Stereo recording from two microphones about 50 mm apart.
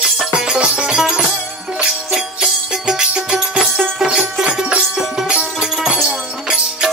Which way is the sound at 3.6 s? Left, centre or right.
Centre.